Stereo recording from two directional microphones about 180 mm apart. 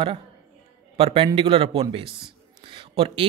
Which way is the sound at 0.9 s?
30° right (ahead or behind).